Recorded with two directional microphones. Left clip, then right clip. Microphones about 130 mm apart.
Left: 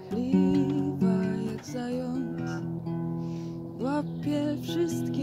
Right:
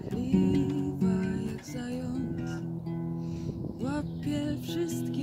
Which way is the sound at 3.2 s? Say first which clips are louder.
Left 1 dB; 35° right (ahead or behind).